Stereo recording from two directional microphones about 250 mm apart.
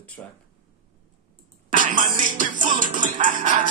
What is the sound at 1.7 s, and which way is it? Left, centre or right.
Music, right.